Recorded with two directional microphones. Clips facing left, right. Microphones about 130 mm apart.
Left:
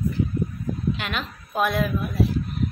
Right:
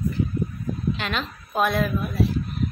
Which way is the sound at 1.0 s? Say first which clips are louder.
Right 2 dB; 10° left (ahead or behind).